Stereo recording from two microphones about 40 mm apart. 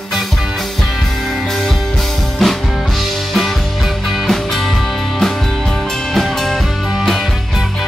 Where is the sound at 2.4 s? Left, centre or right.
Centre.